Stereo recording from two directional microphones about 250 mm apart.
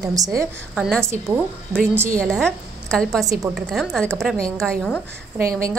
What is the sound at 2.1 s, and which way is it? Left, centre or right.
A woman's voice, centre.